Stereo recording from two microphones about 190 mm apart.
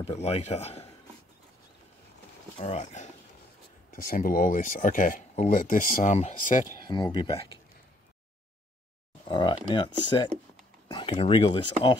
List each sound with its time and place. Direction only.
0.0 s a man's voice: 35° left (ahead or behind)
2.6 s a man's voice: 35° left (ahead or behind)
6.9 s speech: 20° left (ahead or behind)
9.3 s speech: 25° left (ahead or behind)